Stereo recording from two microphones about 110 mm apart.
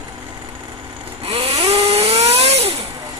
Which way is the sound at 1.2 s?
65° right (ahead or behind).